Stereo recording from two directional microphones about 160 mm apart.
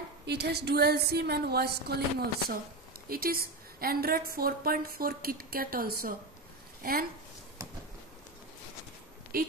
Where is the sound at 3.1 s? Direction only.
65° right (ahead or behind).